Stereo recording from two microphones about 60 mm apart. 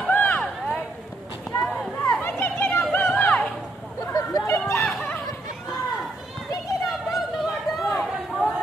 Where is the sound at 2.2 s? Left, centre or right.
Left.